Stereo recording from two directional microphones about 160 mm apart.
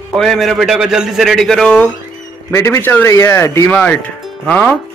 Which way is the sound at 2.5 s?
15° left (ahead or behind).